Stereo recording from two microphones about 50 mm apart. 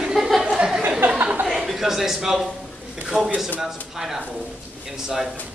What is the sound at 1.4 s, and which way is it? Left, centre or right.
A man's voice, centre.